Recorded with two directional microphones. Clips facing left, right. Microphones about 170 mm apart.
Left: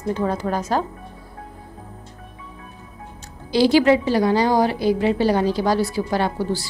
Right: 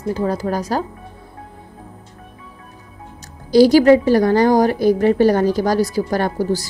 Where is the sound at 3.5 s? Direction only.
40° right (ahead or behind).